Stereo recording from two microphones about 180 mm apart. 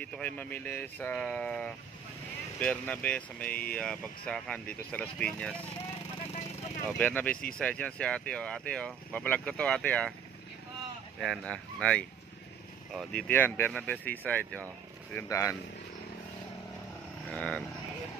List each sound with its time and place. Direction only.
0.0 s speech: 10° left (ahead or behind)
6.9 s speech: 5° left (ahead or behind)
11.1 s speech: 5° left (ahead or behind)
13.3 s speech: 10° left (ahead or behind)
17.3 s speech: 5° left (ahead or behind)